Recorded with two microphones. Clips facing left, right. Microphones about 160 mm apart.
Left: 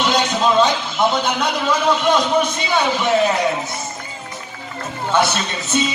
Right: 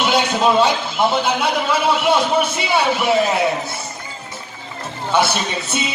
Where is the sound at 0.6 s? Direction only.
5° right (ahead or behind).